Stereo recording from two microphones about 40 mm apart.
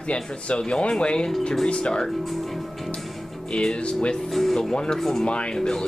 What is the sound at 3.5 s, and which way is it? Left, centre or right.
Speech, left.